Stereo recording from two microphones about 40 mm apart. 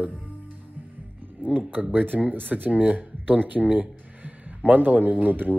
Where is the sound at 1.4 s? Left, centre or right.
Right.